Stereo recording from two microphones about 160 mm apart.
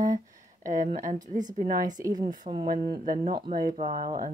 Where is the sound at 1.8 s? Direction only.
25° right (ahead or behind).